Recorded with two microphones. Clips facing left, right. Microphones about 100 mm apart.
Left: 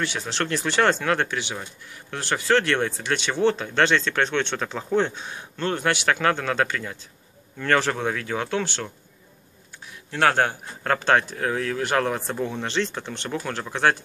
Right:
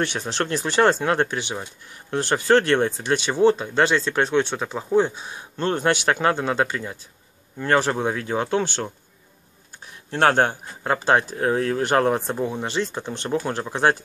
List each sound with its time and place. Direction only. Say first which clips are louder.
0.4 s a man's voice: right 3 dB; 15° right (ahead or behind)
3.1 s speech: right 4 dB; 15° right (ahead or behind)
5.6 s a man's voice: right 3 dB; 25° right (ahead or behind)
10.1 s speech: right 2 dB; 30° right (ahead or behind); by 11.3 s 15° right (ahead or behind)
11.3 s speech: right 4 dB; 30° right (ahead or behind)
12.3 s a man's voice: right 2 dB; 20° right (ahead or behind)